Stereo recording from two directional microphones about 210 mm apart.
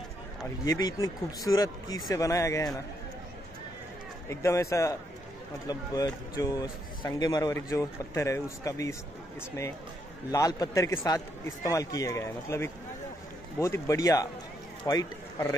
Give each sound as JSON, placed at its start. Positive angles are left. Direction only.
{"t": 0.7, "sound": "speech", "side_deg": 15}
{"t": 4.3, "sound": "speech", "side_deg": 15}
{"t": 10.3, "sound": "speech", "side_deg": 15}